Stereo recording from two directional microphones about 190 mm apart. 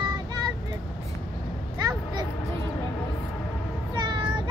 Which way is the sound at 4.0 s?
20° right (ahead or behind).